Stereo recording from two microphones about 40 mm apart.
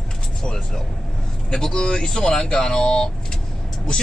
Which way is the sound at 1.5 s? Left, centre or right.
Centre.